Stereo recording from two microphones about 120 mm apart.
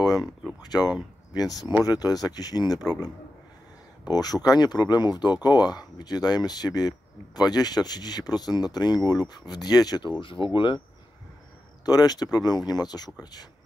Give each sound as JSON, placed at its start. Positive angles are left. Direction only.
{"t": 0.2, "sound": "a sound", "side_deg": -5}
{"t": 0.6, "sound": "speech", "side_deg": 35}
{"t": 4.1, "sound": "speech", "side_deg": 35}
{"t": 11.8, "sound": "speech", "side_deg": 35}